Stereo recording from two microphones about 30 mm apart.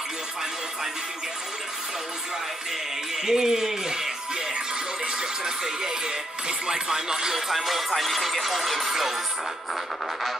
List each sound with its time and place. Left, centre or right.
3.3 s speech: centre
5.0 s speech: right
7.5 s music: centre